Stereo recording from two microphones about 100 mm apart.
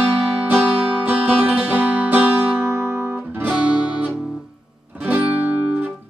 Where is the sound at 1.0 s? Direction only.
15° right (ahead or behind).